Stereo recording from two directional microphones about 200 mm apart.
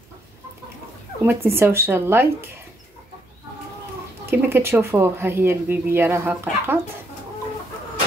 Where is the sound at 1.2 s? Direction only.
10° right (ahead or behind).